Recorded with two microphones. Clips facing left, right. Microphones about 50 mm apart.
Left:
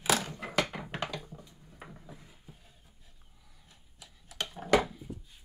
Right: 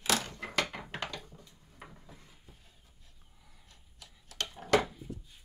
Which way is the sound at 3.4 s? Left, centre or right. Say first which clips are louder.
Right 2 dB; centre.